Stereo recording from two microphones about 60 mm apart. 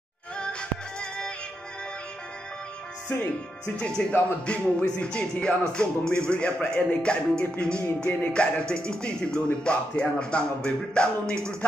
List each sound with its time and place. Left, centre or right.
0.4 s music: centre
3.1 s speech: left
3.7 s music: centre